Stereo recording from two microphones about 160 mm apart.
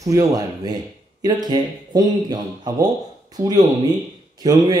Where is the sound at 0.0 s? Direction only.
20° right (ahead or behind).